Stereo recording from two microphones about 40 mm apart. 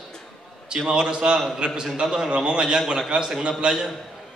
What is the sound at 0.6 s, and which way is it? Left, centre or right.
A man's voice, right.